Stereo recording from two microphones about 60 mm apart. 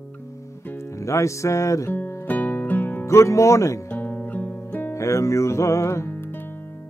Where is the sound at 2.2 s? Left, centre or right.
Left.